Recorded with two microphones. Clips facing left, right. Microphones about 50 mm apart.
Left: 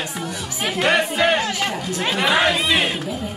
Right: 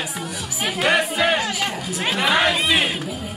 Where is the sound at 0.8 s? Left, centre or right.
Centre.